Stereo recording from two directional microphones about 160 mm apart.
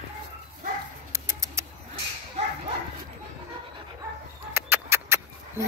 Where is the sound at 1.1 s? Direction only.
20° right (ahead or behind).